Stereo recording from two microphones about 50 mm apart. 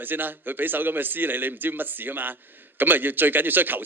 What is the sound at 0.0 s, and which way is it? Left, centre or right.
Speech, right.